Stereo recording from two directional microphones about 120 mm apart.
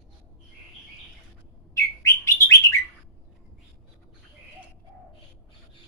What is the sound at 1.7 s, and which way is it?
Bird, 25° left (ahead or behind).